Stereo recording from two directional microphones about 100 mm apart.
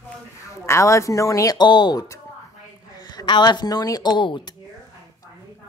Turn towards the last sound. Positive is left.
turn(degrees=50)  # may be behind; listen again after turning